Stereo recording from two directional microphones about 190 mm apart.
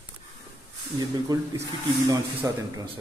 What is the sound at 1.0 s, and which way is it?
A man's voice, 20° right (ahead or behind).